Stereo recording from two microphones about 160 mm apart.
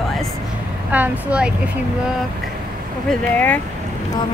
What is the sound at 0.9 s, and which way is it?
Speech, 10° right (ahead or behind).